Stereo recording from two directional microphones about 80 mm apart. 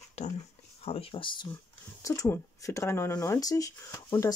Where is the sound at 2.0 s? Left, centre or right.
Left.